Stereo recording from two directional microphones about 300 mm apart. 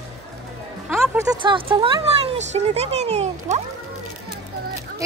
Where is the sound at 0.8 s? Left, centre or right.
Centre; by 3.6 s right.